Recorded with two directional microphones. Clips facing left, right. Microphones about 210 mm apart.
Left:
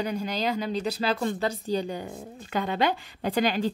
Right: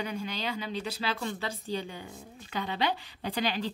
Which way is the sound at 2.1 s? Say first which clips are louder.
Left 7 dB; 55° left (ahead or behind).